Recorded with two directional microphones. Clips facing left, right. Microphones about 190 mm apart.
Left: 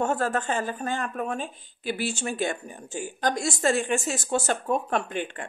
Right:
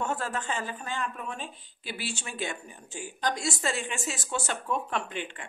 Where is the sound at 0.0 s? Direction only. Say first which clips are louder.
Left 6 dB; 45° left (ahead or behind).